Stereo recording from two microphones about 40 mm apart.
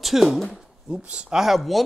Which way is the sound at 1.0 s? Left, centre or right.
Right.